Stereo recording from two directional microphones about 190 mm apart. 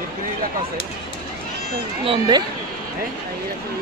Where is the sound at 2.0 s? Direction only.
25° right (ahead or behind).